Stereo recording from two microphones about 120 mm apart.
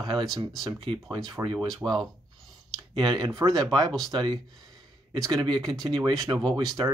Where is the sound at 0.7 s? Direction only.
45° right (ahead or behind).